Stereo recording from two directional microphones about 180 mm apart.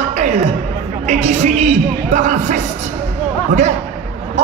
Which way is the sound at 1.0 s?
40° right (ahead or behind).